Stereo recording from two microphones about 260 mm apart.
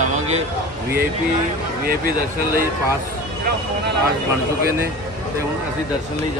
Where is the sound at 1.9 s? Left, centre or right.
Right.